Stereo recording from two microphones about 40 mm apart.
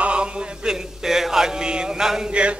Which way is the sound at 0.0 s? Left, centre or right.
Right.